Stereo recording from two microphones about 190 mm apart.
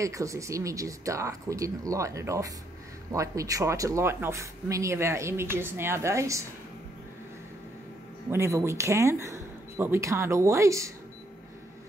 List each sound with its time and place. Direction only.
0.0 s speech: 15° right (ahead or behind)
8.3 s speech: 15° right (ahead or behind)